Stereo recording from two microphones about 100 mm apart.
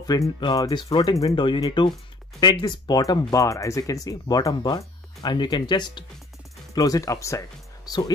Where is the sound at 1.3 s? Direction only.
55° left (ahead or behind); by 7.4 s 30° left (ahead or behind).